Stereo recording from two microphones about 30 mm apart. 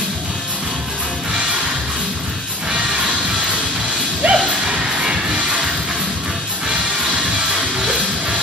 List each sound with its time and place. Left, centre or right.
4.3 s music: right